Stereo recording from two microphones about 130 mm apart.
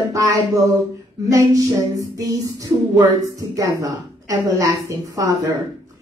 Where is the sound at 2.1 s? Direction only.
25° right (ahead or behind).